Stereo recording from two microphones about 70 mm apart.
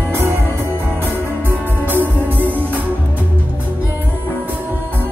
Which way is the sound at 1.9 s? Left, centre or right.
Right.